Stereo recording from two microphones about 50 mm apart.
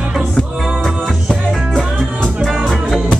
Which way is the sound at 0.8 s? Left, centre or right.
Centre.